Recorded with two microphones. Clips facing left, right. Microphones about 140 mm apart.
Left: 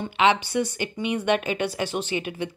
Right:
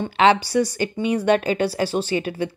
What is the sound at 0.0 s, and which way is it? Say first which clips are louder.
Speech: right 4 dB; 35° right (ahead or behind).